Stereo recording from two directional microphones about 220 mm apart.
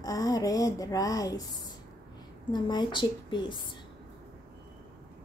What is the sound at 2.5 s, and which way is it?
A woman's voice, 20° left (ahead or behind).